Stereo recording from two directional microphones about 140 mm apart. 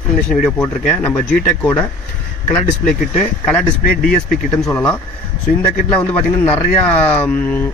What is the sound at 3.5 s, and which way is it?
Speech, 5° left (ahead or behind).